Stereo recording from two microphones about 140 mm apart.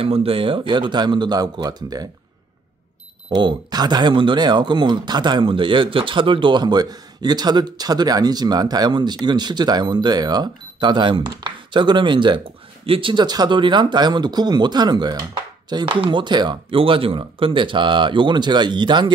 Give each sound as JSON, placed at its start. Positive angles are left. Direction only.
{"t": 0.0, "sound": "speech", "side_deg": -40}
{"t": 3.3, "sound": "speech", "side_deg": -30}